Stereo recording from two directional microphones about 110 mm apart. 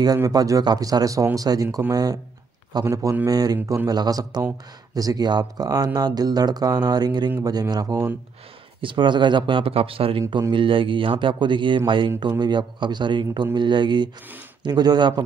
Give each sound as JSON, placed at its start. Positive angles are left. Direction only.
{"t": 0.0, "sound": "speech", "side_deg": -35}
{"t": 8.8, "sound": "speech", "side_deg": -45}